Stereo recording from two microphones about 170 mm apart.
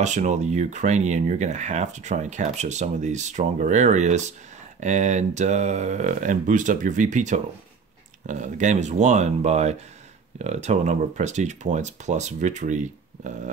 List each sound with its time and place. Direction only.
0.0 s speech: 45° right (ahead or behind)